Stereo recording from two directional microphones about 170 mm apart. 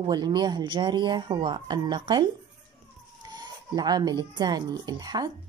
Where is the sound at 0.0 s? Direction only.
25° right (ahead or behind).